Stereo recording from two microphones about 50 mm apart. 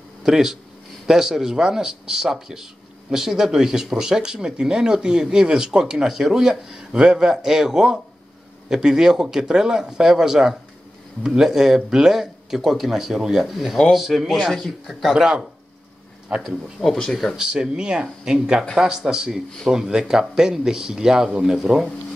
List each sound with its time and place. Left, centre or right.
0.2 s speech: centre
16.4 s speech: centre
17.4 s speech: centre